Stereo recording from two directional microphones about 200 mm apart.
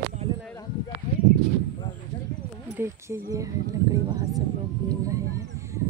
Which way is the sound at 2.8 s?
10° right (ahead or behind).